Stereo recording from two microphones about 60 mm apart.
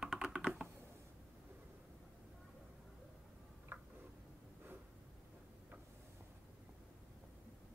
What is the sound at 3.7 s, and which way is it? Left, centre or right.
Tick-tock, right.